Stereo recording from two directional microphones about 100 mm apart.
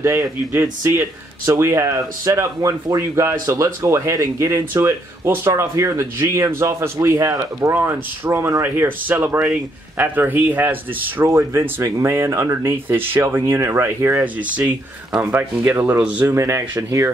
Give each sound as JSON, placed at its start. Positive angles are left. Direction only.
{"t": 0.5, "sound": "speech", "side_deg": -25}
{"t": 8.6, "sound": "speech", "side_deg": -20}
{"t": 16.3, "sound": "speech", "side_deg": -30}